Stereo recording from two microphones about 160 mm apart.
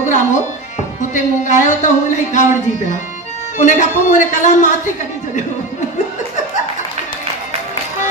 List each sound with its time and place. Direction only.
0.0 s music: 50° left (ahead or behind)
1.0 s a man's voice: 50° left (ahead or behind)
3.5 s a man's voice: 50° left (ahead or behind)